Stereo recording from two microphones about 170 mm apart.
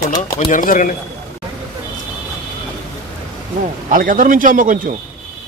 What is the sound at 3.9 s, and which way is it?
Speech, 50° right (ahead or behind).